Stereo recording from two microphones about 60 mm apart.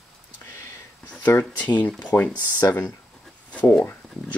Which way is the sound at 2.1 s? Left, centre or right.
Left.